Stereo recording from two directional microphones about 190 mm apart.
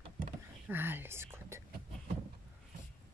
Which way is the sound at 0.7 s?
10° right (ahead or behind).